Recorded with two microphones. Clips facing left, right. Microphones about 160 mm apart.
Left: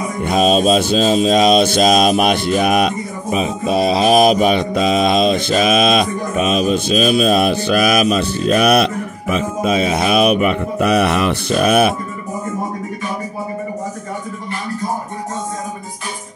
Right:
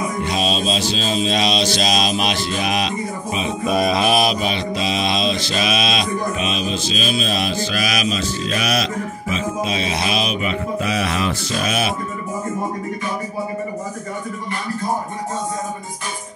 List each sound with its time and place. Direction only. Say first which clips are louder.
0.2 s mantra: left 10 dB; 50° left (ahead or behind)
3.6 s mantra: left 3 dB; 30° left (ahead or behind); by 11.9 s 55° left (ahead or behind)